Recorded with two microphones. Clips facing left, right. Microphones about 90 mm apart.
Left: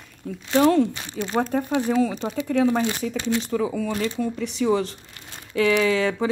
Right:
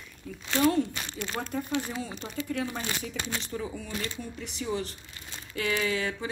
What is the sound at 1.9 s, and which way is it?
Speech, 90° left.